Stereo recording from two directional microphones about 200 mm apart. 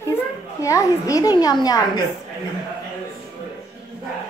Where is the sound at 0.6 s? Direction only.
15° left (ahead or behind).